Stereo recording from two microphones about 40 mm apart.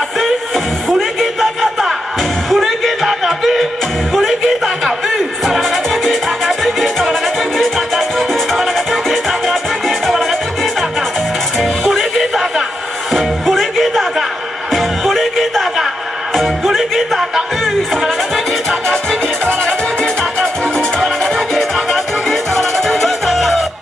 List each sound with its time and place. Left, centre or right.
1.2 s a sound: centre
4.1 s music: centre
18.9 s music: left
21.0 s music: centre